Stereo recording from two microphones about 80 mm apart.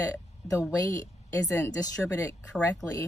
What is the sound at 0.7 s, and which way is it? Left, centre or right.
Speech, left.